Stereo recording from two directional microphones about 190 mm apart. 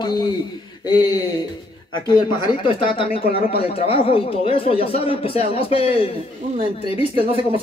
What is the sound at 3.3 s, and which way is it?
Speech, 30° left (ahead or behind).